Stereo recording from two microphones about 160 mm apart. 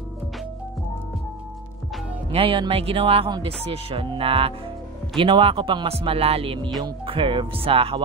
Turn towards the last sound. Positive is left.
turn(degrees=-35)  # may be behind; listen again after turning